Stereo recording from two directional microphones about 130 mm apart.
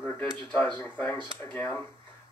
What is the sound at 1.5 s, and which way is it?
Speech, 15° left (ahead or behind).